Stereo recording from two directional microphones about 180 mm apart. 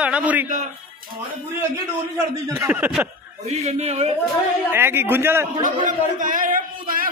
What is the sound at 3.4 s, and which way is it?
Speech, 35° right (ahead or behind).